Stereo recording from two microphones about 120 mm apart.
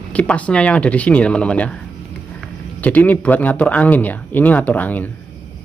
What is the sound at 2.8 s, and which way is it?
Speech, 15° left (ahead or behind).